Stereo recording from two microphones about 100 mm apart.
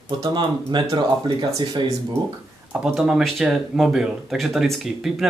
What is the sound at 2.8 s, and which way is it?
Speech, 10° right (ahead or behind).